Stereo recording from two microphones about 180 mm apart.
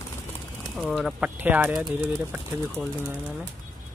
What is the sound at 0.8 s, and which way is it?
Speech, centre (ahead or behind).